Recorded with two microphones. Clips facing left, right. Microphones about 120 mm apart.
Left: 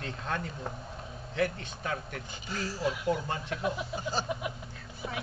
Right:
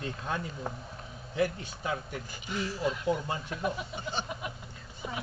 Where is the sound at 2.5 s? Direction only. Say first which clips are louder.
Right 2 dB; 35° left (ahead or behind).